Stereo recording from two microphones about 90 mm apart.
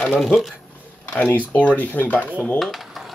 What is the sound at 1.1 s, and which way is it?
Speech, 15° left (ahead or behind).